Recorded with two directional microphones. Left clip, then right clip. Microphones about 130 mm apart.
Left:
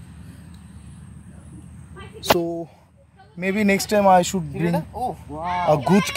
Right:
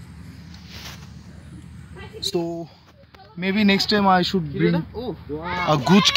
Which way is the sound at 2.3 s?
5° left (ahead or behind).